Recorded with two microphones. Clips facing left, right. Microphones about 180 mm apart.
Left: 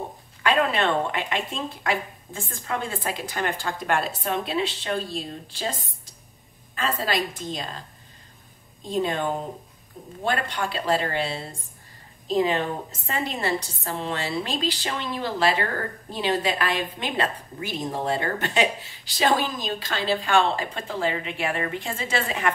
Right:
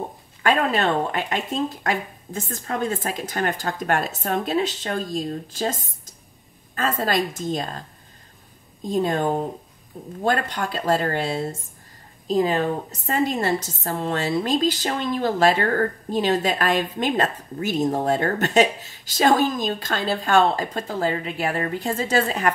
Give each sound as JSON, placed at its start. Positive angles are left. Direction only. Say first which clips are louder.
{"t": 0.4, "sound": "a woman's voice", "louder": "right 2 dB", "side_deg": -45}
{"t": 8.8, "sound": "a woman's voice", "louder": "right 3 dB", "side_deg": -45}